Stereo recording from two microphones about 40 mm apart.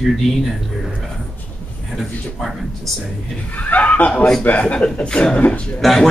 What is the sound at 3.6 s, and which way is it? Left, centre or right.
A man's voice, left.